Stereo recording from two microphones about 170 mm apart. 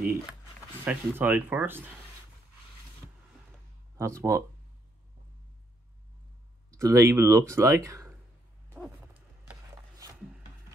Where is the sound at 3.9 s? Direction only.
15° right (ahead or behind).